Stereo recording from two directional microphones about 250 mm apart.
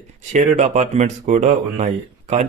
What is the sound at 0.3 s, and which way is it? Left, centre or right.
A man's voice, right.